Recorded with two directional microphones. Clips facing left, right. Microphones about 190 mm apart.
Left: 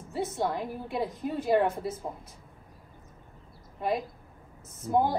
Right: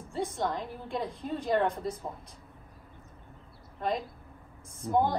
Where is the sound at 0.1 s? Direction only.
5° left (ahead or behind).